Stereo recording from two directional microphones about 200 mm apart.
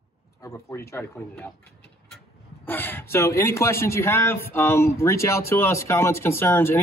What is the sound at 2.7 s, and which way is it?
Speech, 10° left (ahead or behind).